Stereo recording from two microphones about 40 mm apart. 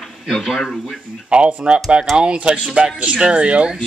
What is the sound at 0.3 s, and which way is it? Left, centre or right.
Speech, centre.